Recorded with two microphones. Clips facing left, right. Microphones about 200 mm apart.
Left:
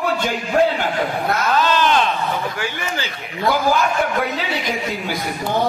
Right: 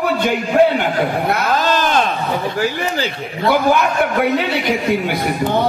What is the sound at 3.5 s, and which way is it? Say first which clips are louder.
A man's voice: right 3 dB; 65° right (ahead or behind).